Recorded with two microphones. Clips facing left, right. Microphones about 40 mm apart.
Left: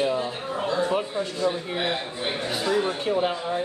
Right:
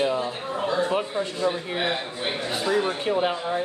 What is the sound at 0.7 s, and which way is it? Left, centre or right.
Speech, centre.